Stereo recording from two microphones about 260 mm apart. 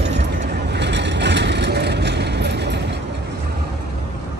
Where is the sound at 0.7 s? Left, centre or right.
Right.